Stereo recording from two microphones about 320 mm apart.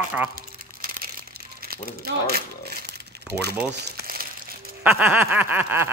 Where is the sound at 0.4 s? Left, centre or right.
Right.